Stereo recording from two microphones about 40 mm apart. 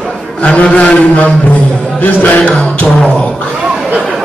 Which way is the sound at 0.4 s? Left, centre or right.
Left.